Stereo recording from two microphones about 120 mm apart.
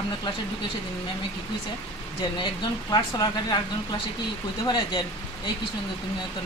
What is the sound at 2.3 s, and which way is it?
Speech, 40° left (ahead or behind).